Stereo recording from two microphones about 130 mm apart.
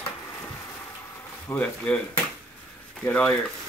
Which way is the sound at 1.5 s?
10° left (ahead or behind).